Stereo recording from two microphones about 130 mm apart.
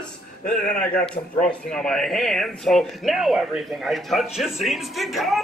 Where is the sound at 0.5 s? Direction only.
5° left (ahead or behind).